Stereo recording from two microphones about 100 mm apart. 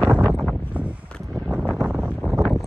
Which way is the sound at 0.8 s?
15° right (ahead or behind).